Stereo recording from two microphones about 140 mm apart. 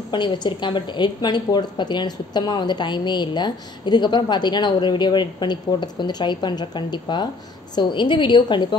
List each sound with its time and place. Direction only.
0.1 s a woman's voice: 35° left (ahead or behind)